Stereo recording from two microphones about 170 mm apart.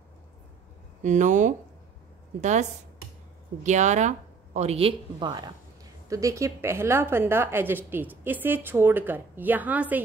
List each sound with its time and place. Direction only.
1.0 s speech: 45° right (ahead or behind)
3.6 s a woman's voice: 45° right (ahead or behind); by 10.0 s 10° right (ahead or behind)